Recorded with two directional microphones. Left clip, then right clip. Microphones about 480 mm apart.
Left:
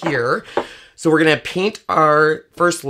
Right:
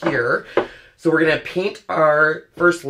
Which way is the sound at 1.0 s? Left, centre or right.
Left.